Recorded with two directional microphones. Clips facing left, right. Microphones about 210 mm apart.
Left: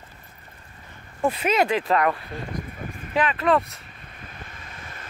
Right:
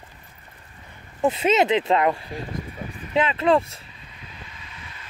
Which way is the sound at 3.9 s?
55° left (ahead or behind).